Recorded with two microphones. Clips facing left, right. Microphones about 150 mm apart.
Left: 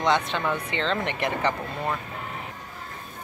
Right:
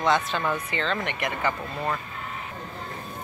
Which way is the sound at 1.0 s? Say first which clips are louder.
Left 2 dB; 30° left (ahead or behind).